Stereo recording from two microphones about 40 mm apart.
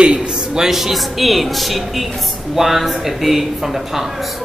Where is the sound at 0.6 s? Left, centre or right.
Centre.